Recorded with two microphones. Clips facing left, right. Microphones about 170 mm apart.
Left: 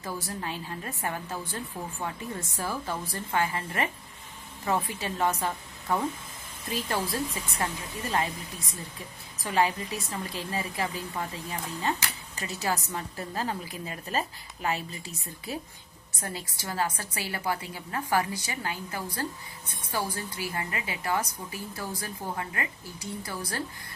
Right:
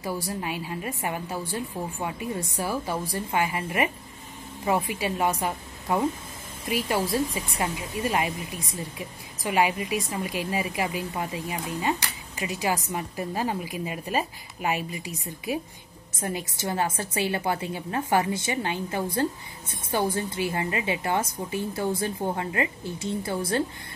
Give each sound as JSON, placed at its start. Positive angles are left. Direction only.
{"t": 0.0, "sound": "a woman's voice", "side_deg": -10}